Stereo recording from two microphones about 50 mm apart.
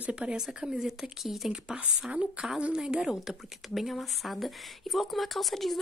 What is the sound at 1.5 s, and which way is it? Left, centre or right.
A woman's voice, centre.